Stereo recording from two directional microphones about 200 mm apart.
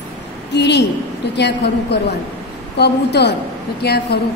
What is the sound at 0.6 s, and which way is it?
A woman's voice, 60° left (ahead or behind).